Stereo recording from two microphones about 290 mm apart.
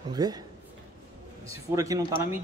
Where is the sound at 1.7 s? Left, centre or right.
Centre.